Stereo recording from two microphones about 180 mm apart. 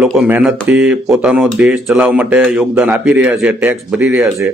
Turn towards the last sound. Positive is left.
turn(degrees=-10)  # may be behind; listen again after turning